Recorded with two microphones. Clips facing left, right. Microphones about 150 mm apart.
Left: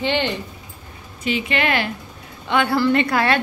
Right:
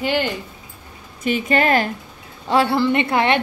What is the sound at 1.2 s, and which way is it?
A woman's voice, 45° right (ahead or behind).